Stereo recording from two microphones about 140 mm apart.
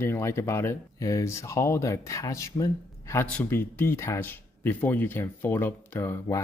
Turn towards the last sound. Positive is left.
turn(degrees=15)  # may be behind; listen again after turning